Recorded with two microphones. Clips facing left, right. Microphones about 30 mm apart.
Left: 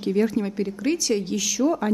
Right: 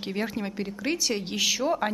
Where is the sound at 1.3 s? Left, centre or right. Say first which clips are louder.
Left 3 dB; right.